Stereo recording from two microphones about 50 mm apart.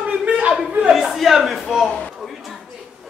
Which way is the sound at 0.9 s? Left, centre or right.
Centre.